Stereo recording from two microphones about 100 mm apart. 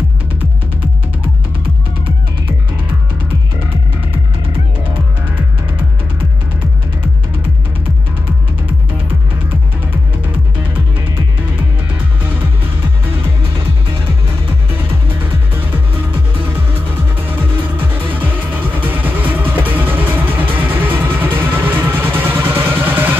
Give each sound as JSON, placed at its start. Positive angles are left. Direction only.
{"t": 18.8, "sound": "music", "side_deg": -15}